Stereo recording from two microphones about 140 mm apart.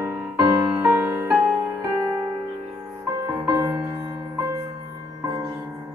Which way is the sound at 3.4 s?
20° right (ahead or behind).